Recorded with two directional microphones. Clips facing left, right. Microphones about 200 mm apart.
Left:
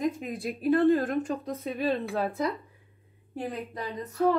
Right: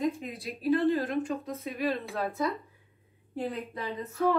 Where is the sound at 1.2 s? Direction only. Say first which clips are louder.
Left 1 dB; 30° left (ahead or behind).